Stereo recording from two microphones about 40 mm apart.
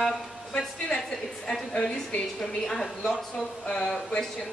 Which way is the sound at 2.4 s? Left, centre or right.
Centre.